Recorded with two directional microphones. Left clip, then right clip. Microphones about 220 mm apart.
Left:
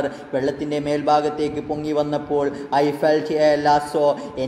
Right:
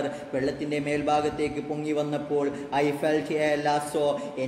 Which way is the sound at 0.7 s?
10° left (ahead or behind).